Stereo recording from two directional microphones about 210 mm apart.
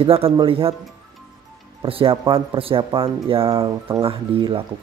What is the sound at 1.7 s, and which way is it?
Speech, 25° right (ahead or behind).